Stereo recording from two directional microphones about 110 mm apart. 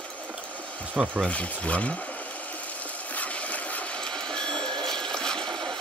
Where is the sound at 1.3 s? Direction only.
10° left (ahead or behind).